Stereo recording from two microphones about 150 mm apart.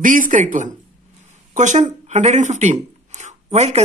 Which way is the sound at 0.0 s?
60° right (ahead or behind).